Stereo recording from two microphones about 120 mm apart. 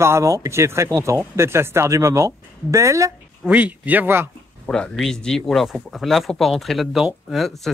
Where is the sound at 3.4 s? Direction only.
10° right (ahead or behind).